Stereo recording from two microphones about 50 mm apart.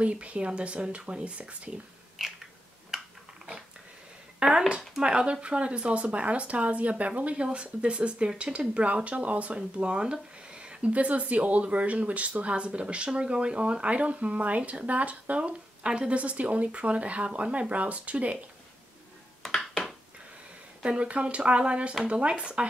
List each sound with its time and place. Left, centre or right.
0.0 s speech: right
2.9 s a sound: centre
4.4 s speech: centre
9.6 s speech: centre
20.8 s speech: right